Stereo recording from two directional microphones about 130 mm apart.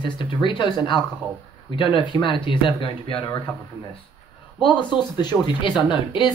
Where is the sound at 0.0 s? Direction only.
35° left (ahead or behind).